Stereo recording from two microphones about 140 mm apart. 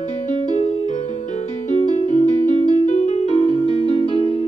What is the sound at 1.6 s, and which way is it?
Music, 60° left (ahead or behind).